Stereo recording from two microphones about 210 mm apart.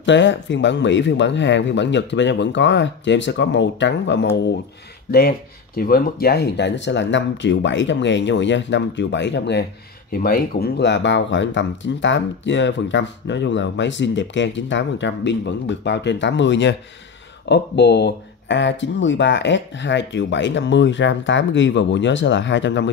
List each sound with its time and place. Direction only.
0.0 s speech: 60° left (ahead or behind)
5.8 s speech: 45° left (ahead or behind)
10.1 s speech: 45° left (ahead or behind); by 22.8 s 60° left (ahead or behind)